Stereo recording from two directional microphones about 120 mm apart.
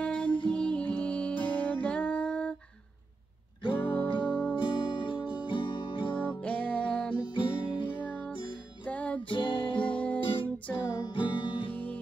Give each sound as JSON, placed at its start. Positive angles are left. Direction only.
{"t": 0.0, "sound": "music", "side_deg": 10}
{"t": 3.7, "sound": "music", "side_deg": 15}
{"t": 4.6, "sound": "music", "side_deg": 45}
{"t": 6.1, "sound": "music", "side_deg": 15}
{"t": 7.2, "sound": "music", "side_deg": 45}
{"t": 8.0, "sound": "music", "side_deg": 15}
{"t": 9.3, "sound": "music", "side_deg": 45}
{"t": 9.8, "sound": "music", "side_deg": 10}
{"t": 10.7, "sound": "music", "side_deg": 40}
{"t": 11.7, "sound": "music", "side_deg": 15}